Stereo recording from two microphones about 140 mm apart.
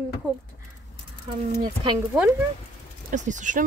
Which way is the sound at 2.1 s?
5° right (ahead or behind).